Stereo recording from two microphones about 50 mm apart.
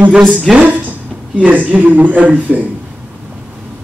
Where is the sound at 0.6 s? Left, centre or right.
Right.